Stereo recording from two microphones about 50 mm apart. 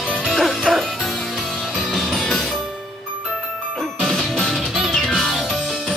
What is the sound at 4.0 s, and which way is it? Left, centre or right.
Music, centre.